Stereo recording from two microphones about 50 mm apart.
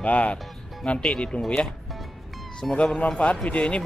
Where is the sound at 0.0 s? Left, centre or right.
Left.